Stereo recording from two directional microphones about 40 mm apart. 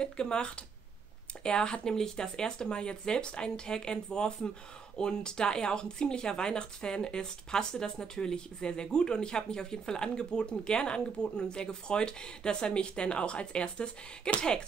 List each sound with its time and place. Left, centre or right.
0.0 s speech: left